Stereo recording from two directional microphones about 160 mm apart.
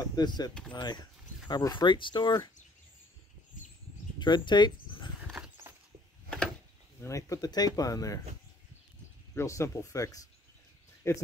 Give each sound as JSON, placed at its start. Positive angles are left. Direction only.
{"t": 0.0, "sound": "speech", "side_deg": 25}
{"t": 4.2, "sound": "a sound", "side_deg": 30}
{"t": 5.3, "sound": "horse", "side_deg": -5}
{"t": 7.0, "sound": "speech", "side_deg": 20}
{"t": 9.3, "sound": "speech", "side_deg": 15}